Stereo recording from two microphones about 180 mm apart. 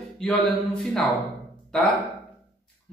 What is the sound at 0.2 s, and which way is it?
Speech, 5° left (ahead or behind).